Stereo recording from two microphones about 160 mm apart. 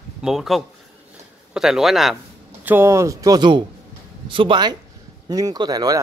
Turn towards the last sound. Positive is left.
turn(degrees=-25)  # may be behind; listen again after turning